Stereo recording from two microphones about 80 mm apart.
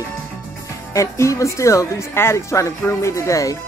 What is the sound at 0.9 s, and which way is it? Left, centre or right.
Speech, left.